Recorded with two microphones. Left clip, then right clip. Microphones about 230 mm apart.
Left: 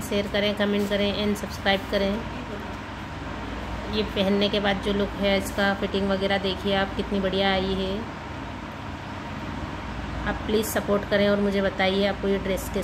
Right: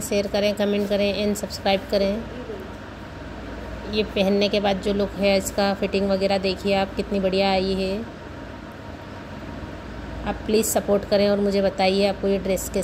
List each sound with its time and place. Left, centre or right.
0.1 s speech: right
3.9 s speech: right
10.2 s speech: right